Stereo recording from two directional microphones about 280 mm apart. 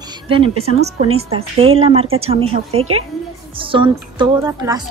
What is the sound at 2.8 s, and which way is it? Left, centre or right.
Speech, right.